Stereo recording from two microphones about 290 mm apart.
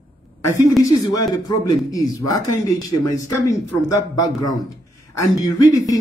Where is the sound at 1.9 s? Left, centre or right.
Centre.